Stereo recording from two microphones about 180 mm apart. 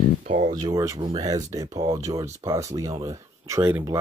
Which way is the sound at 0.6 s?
20° right (ahead or behind).